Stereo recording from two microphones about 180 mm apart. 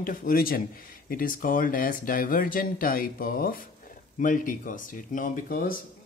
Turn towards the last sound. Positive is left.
turn(degrees=55)  # may be behind; listen again after turning